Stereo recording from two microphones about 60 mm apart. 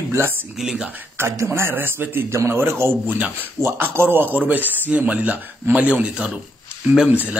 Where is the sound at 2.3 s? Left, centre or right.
Right.